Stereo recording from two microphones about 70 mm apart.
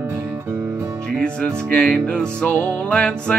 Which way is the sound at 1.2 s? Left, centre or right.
Centre.